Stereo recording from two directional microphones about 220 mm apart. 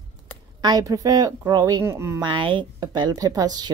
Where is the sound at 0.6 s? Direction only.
15° right (ahead or behind).